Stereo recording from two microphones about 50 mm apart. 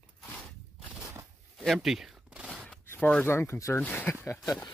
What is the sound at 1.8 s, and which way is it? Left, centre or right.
Speech, centre.